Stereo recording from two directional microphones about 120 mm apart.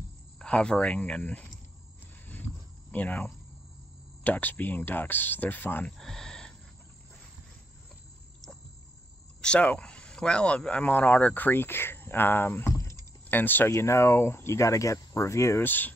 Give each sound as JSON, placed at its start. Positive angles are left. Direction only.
{"t": 0.4, "sound": "speech", "side_deg": 10}
{"t": 2.9, "sound": "speech", "side_deg": 15}
{"t": 5.9, "sound": "a sound", "side_deg": 5}
{"t": 9.4, "sound": "speech", "side_deg": 10}